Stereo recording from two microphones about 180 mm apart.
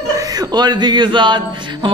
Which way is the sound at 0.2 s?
20° right (ahead or behind).